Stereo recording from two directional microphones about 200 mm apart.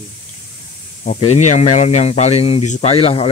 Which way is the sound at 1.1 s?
35° left (ahead or behind).